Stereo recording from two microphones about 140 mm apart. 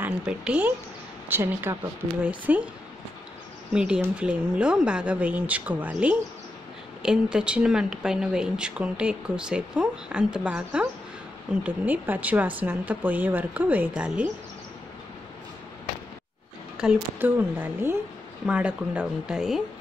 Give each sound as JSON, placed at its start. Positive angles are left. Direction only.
{"t": 0.0, "sound": "a woman's voice", "side_deg": -10}
{"t": 3.7, "sound": "speech", "side_deg": -5}
{"t": 16.7, "sound": "speech", "side_deg": -10}